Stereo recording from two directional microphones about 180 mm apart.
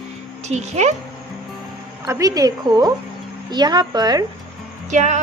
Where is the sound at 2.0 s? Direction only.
20° right (ahead or behind).